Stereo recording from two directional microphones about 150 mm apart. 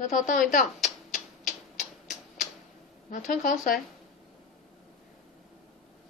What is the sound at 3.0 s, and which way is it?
Speech, 60° left (ahead or behind).